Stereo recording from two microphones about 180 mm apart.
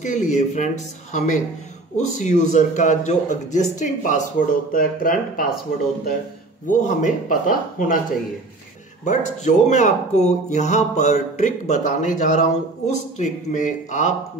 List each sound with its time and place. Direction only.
0.0 s a man's voice: 45° left (ahead or behind)
6.7 s a man's voice: 45° left (ahead or behind)
9.0 s speech: 40° left (ahead or behind)